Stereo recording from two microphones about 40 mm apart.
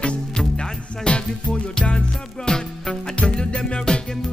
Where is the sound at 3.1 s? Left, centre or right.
Left.